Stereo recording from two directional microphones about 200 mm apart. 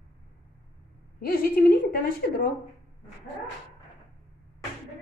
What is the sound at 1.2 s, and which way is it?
A woman's voice, 45° left (ahead or behind).